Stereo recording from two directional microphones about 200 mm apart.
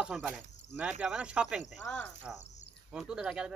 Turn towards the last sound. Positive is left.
turn(degrees=-5)  # may be behind; listen again after turning